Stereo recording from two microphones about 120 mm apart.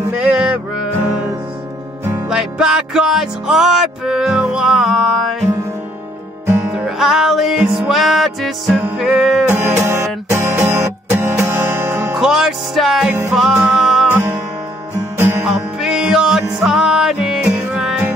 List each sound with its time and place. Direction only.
0.2 s music: 10° right (ahead or behind)
2.2 s music: 5° right (ahead or behind)
6.7 s music: 5° right (ahead or behind)
9.5 s music: 20° right (ahead or behind)
12.2 s music: 5° right (ahead or behind)
15.1 s music: 20° right (ahead or behind)
15.4 s music: 5° right (ahead or behind)